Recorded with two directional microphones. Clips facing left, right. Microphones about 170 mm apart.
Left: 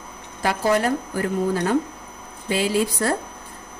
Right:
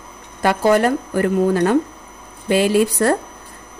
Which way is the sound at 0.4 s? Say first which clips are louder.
Right 6 dB; 60° right (ahead or behind).